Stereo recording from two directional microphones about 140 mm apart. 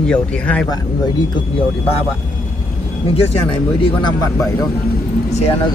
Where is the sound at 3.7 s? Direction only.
40° left (ahead or behind).